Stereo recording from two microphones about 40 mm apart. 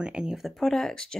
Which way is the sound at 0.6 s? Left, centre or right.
Centre.